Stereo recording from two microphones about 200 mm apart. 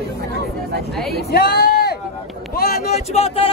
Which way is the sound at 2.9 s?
30° left (ahead or behind).